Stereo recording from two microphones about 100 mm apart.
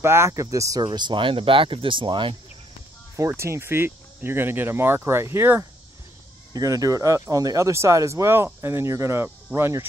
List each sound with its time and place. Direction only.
0.0 s speech: 25° right (ahead or behind); by 2.3 s 55° right (ahead or behind)
3.2 s speech: 30° right (ahead or behind)
6.5 s speech: 35° right (ahead or behind)